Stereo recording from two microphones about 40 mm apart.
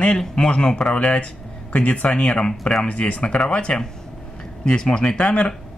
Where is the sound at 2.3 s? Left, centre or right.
Centre.